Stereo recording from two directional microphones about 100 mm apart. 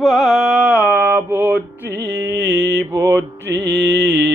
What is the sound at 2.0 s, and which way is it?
Mantra, 25° right (ahead or behind).